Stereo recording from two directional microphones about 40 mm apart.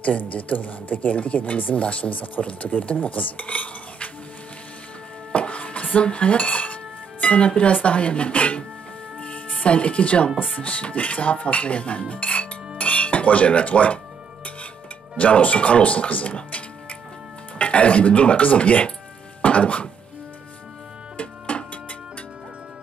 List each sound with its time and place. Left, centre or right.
0.2 s speech: left
5.3 s dishes: left
9.2 s speech: left
15.1 s speech: left
19.4 s music: left
21.2 s music: left